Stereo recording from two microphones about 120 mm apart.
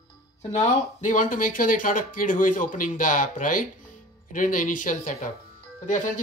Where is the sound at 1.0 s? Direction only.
90° left.